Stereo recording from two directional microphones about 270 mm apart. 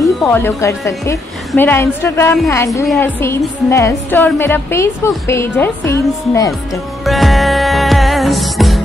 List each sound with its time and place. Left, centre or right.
0.2 s a woman's voice: centre
7.1 s music: centre